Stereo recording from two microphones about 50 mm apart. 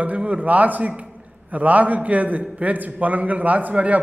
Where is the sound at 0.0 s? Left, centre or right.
Right.